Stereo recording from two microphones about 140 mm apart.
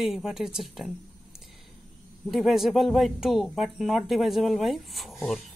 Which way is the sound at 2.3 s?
Centre (ahead or behind).